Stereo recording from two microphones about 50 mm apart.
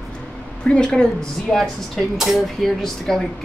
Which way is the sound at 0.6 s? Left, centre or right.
Centre.